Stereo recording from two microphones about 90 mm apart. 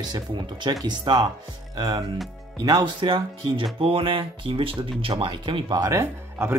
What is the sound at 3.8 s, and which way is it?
Speech, 90° right.